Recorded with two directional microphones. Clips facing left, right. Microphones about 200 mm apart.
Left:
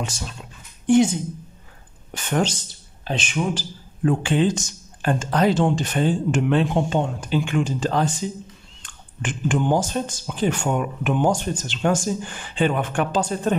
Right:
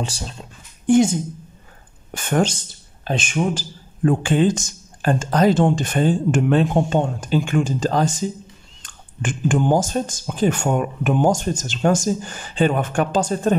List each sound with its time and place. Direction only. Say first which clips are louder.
0.0 s speech: right 2 dB; 30° right (ahead or behind)
2.1 s speech: right 3 dB; 50° right (ahead or behind)